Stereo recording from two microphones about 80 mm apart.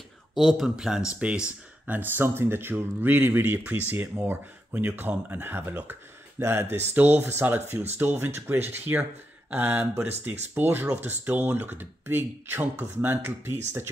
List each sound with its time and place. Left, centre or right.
0.3 s speech: centre; by 13.8 s right